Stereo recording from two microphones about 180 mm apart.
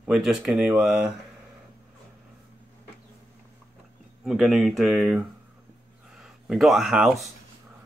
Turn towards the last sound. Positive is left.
turn(degrees=-5)  # may be behind; listen again after turning